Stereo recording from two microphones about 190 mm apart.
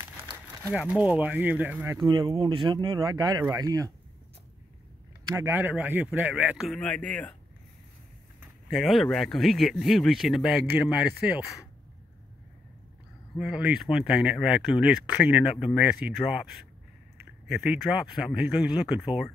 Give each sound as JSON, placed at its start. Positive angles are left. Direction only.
{"t": 0.7, "sound": "speech", "side_deg": -10}
{"t": 5.2, "sound": "speech", "side_deg": -15}
{"t": 6.8, "sound": "speech", "side_deg": 5}
{"t": 8.6, "sound": "speech", "side_deg": 0}
{"t": 13.4, "sound": "speech", "side_deg": -5}